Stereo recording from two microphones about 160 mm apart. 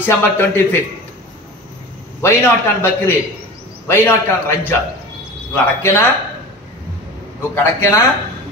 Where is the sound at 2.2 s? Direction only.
15° left (ahead or behind).